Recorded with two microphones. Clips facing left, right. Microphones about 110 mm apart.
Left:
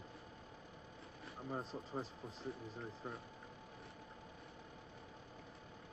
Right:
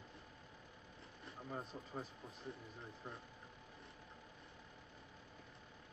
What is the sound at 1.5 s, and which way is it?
Speech, 30° left (ahead or behind).